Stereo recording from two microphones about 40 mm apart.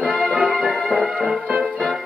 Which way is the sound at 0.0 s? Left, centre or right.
Right.